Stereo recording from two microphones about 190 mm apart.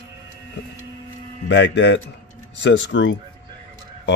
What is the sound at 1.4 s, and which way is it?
Speech, 70° left (ahead or behind).